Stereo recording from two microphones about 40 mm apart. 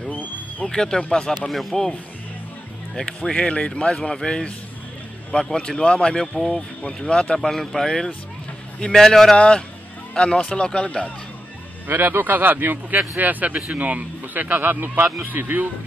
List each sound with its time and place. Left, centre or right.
0.1 s a sound: left
0.7 s speech: centre
1.7 s a man's voice: centre
3.0 s speech: left
4.1 s a man's voice: centre
6.2 s a man's voice: centre
7.1 s speech: left
7.4 s a man's voice: centre
10.1 s speech: left
11.9 s speech: right
13.2 s speech: right